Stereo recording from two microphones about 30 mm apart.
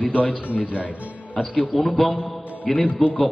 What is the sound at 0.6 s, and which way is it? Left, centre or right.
Speech, right.